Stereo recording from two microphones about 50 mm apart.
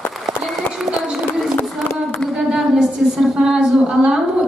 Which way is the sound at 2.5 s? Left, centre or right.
Centre.